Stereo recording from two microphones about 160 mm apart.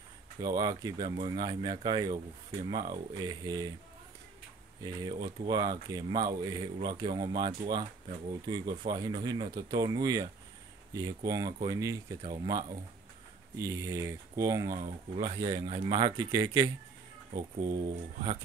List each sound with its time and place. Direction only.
0.4 s a man's voice: 25° right (ahead or behind)
4.8 s a man's voice: 25° right (ahead or behind)
14.9 s a man's voice: 35° right (ahead or behind)